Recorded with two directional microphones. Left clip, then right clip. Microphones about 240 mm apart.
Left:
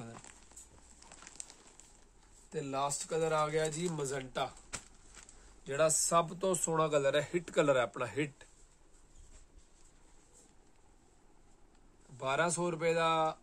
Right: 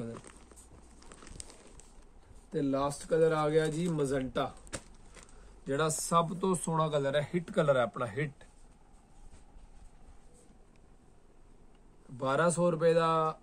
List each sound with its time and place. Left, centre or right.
0.9 s a sound: centre
2.5 s speech: left
5.6 s speech: left
12.2 s speech: centre